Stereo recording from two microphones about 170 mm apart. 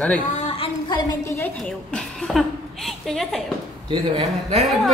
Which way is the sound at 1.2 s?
15° left (ahead or behind).